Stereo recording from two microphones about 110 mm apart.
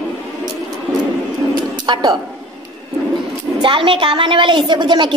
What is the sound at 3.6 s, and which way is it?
A woman's voice, 50° right (ahead or behind).